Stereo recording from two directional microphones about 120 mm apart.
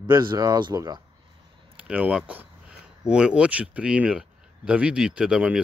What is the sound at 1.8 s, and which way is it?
Speech, 10° right (ahead or behind).